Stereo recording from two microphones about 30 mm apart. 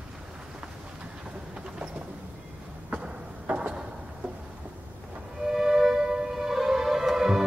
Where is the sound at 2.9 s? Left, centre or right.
Right.